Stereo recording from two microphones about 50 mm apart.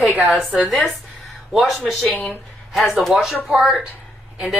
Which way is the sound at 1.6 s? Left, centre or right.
Centre.